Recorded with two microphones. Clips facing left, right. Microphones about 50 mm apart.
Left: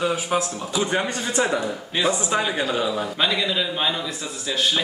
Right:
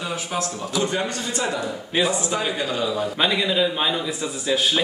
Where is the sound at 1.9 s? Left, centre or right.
Centre.